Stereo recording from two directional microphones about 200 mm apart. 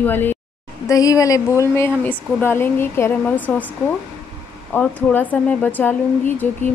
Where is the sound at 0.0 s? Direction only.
10° left (ahead or behind).